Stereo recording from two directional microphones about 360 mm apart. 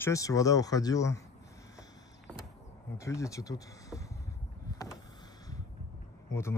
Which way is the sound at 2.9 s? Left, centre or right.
Centre.